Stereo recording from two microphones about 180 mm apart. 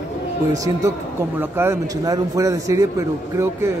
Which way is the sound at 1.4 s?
10° right (ahead or behind).